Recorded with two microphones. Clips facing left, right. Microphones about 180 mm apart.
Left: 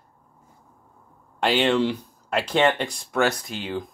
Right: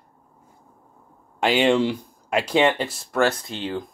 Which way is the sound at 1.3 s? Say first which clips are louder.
Right 2 dB; 10° right (ahead or behind).